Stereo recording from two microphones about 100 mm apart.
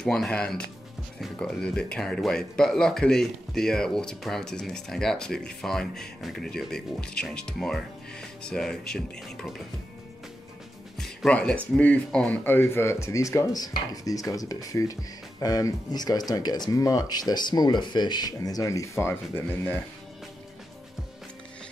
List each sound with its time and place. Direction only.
0.0 s speech: 5° left (ahead or behind)
11.0 s music: 10° left (ahead or behind)
11.7 s speech: 10° left (ahead or behind)
12.4 s speech: 25° left (ahead or behind)